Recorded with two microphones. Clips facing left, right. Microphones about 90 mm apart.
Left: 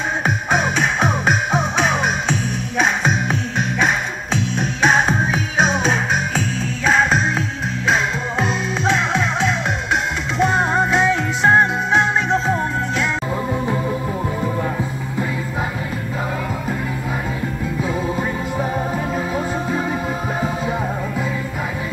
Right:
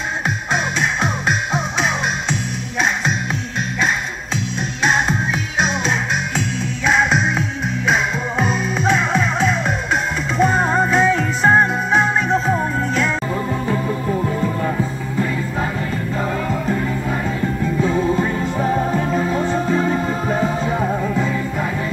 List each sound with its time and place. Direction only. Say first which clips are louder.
10.3 s music: right 1 dB; 20° left (ahead or behind)
17.8 s music: right 4 dB; 10° left (ahead or behind)